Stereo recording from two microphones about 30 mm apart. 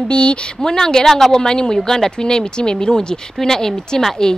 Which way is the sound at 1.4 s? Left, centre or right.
Left.